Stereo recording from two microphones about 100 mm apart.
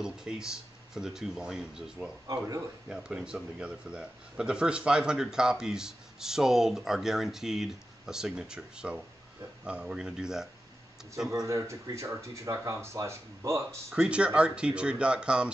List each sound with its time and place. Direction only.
0.0 s speech: 5° right (ahead or behind)
2.3 s speech: 30° right (ahead or behind)
2.9 s speech: 10° right (ahead or behind)
11.4 s speech: 30° right (ahead or behind)
13.9 s speech: 10° right (ahead or behind)